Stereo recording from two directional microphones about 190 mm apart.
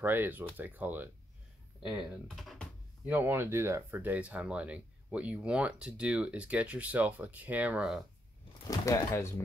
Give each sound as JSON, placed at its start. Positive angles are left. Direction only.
{"t": 0.0, "sound": "speech", "side_deg": -10}
{"t": 3.2, "sound": "speech", "side_deg": -10}
{"t": 8.6, "sound": "speech", "side_deg": 15}